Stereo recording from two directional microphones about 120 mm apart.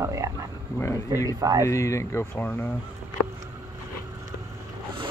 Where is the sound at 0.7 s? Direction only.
20° left (ahead or behind).